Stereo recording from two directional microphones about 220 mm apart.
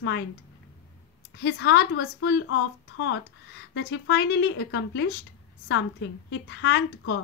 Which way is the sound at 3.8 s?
50° left (ahead or behind).